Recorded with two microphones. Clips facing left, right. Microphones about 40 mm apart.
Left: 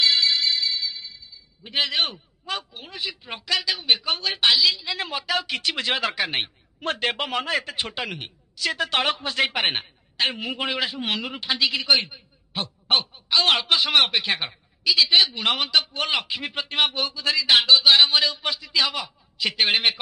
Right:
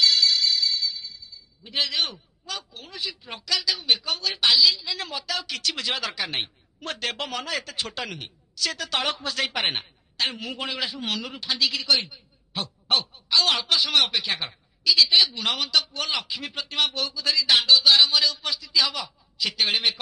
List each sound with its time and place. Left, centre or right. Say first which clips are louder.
0.0 s music: even; left
2.4 s a woman's voice: left 5 dB; left